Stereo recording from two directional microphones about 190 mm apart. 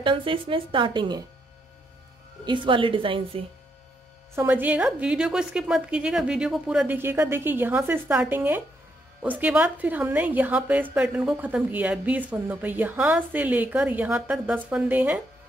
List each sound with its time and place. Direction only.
0.0 s speech: 25° right (ahead or behind)
2.4 s speech: 25° right (ahead or behind)
4.4 s a woman's voice: 10° right (ahead or behind)